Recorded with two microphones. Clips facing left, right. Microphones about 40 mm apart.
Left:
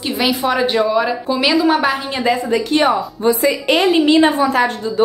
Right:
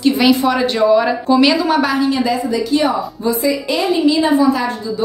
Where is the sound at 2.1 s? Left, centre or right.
Left.